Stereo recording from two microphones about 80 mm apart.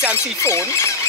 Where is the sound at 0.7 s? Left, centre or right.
Left.